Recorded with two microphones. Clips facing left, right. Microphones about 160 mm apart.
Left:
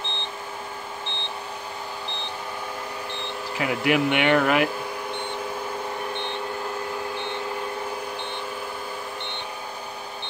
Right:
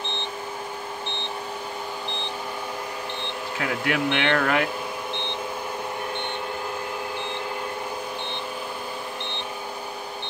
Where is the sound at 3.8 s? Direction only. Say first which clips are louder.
Left 4 dB; 10° left (ahead or behind).